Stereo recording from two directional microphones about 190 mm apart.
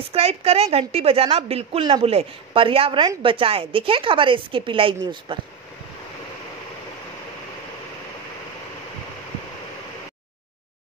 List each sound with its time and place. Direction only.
0.1 s a woman's voice: 30° right (ahead or behind)